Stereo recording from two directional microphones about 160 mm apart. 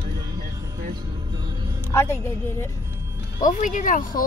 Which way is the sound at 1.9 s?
15° left (ahead or behind).